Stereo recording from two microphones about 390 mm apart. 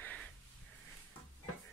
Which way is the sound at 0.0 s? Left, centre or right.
Centre.